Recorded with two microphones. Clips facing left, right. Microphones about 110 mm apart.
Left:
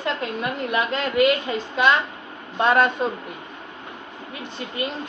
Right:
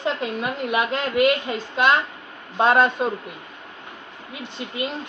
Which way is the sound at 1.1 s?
5° right (ahead or behind).